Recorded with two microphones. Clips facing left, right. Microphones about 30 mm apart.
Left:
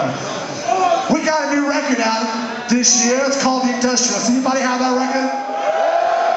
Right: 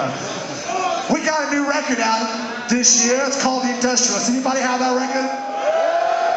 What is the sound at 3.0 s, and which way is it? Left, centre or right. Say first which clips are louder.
Music: left 2 dB; centre.